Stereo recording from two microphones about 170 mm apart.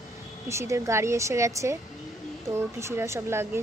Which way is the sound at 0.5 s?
15° right (ahead or behind).